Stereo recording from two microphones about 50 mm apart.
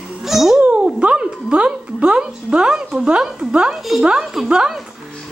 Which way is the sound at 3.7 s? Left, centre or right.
Centre.